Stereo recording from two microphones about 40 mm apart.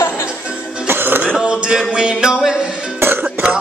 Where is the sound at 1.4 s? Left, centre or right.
Right.